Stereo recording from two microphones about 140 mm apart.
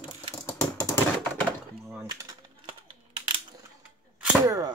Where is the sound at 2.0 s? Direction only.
30° right (ahead or behind).